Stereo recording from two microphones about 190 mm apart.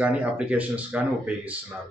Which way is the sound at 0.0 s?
5° right (ahead or behind).